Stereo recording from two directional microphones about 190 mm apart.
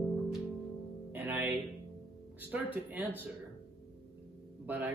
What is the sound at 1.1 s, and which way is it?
Music, 10° right (ahead or behind).